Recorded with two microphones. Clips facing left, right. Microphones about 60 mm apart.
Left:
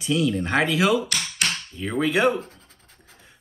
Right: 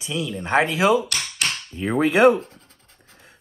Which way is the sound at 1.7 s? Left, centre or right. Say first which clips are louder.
Right 4 dB; right.